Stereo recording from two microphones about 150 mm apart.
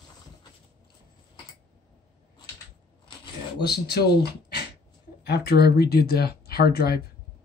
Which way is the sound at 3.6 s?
90° left.